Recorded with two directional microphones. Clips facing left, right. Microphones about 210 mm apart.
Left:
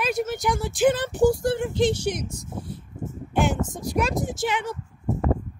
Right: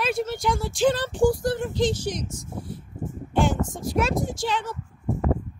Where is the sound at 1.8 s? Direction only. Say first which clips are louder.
Left 3 dB; 60° left (ahead or behind).